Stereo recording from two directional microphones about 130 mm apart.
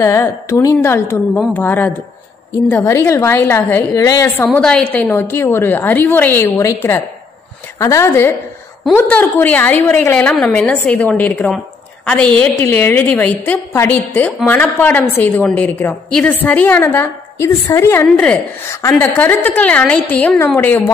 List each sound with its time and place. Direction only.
0.0 s a woman's voice: 20° left (ahead or behind)
3.9 s a woman's voice: 30° left (ahead or behind)
4.5 s a woman's voice: 5° left (ahead or behind)
4.9 s a woman's voice: 15° left (ahead or behind)
18.7 s a woman's voice: 20° left (ahead or behind)